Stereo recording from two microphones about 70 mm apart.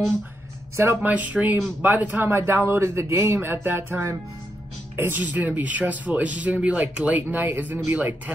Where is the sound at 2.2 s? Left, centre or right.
Right.